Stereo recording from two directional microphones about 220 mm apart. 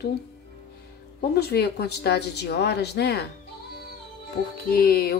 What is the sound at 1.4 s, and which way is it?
A woman's voice, 45° left (ahead or behind).